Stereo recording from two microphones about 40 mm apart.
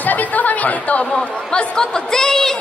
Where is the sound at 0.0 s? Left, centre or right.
Left.